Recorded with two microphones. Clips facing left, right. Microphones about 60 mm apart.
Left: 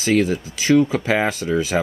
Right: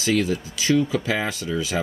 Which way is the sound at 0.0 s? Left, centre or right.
Left.